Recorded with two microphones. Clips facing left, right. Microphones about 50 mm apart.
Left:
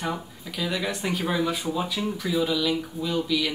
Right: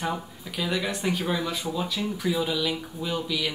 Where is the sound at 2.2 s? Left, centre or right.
Centre.